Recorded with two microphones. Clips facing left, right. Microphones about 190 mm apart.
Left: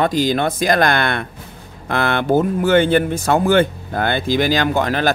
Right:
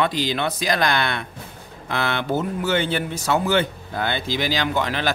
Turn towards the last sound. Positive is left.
turn(degrees=45)  # may be behind; listen again after turning